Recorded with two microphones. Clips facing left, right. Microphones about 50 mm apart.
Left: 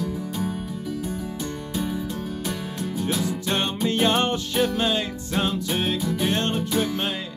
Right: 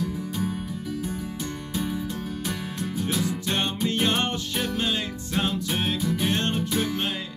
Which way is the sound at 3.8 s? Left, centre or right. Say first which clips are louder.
Left 5 dB; centre.